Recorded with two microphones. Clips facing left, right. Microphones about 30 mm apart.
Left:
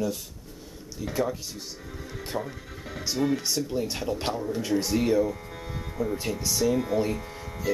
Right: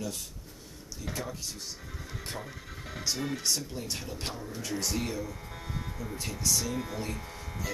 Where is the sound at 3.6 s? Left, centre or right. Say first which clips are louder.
Left 9 dB; centre.